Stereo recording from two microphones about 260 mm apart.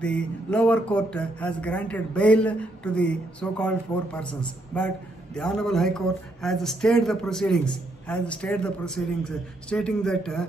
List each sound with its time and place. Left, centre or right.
0.0 s speech: centre